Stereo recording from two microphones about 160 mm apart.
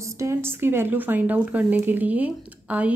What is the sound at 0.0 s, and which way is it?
Speech, 20° right (ahead or behind).